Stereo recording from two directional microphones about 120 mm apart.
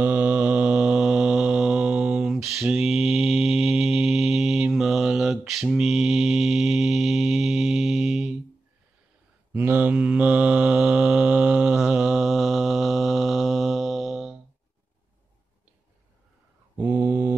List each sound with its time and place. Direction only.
0.0 s mantra: 15° right (ahead or behind)
9.5 s mantra: 15° right (ahead or behind)
16.7 s mantra: 15° right (ahead or behind)